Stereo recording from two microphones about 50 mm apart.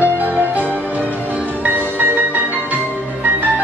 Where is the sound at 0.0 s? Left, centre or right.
Right.